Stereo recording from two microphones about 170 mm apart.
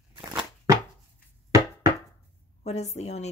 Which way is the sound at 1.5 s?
20° right (ahead or behind).